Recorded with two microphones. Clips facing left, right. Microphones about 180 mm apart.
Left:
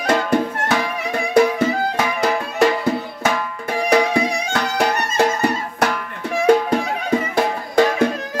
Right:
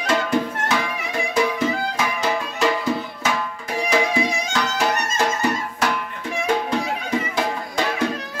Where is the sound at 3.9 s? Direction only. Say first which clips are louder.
Left 4 dB; 60° left (ahead or behind).